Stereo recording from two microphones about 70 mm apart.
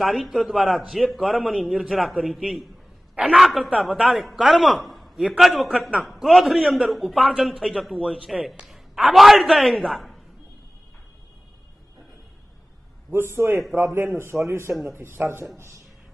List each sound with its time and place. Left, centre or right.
0.0 s a man's voice: centre
13.1 s speech: right